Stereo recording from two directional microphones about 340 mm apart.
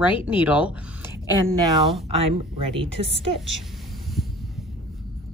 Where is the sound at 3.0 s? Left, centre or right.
Right.